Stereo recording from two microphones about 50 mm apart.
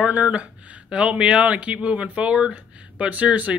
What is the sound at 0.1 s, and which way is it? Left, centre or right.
Speech, right.